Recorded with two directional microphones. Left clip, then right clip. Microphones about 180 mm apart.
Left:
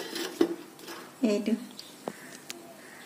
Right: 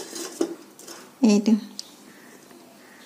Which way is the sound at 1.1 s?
60° right (ahead or behind).